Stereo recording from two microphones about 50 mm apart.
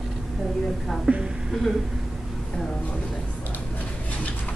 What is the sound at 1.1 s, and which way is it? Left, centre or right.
Speech, centre.